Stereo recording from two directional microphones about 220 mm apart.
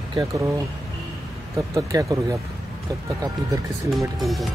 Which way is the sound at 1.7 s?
15° right (ahead or behind).